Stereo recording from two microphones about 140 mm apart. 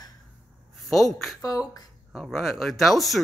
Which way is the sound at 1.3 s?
25° left (ahead or behind).